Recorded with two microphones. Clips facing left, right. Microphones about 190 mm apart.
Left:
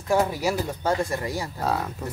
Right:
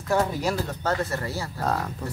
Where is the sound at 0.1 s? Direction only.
10° left (ahead or behind).